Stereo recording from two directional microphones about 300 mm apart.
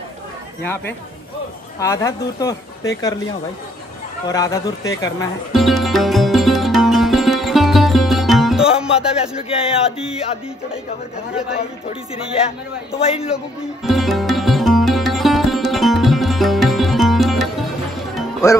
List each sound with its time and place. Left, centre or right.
1.8 s speech: centre
4.3 s speech: centre
5.5 s music: centre
9.5 s a sound: centre
12.9 s a sound: centre
13.8 s music: centre